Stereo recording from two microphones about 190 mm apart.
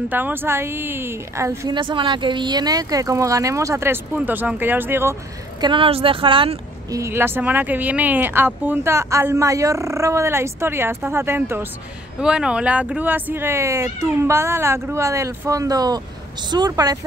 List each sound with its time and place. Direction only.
0.1 s speech: 10° right (ahead or behind)
1.8 s speech: 25° right (ahead or behind)
5.6 s speech: 25° right (ahead or behind)
7.0 s speech: 15° right (ahead or behind)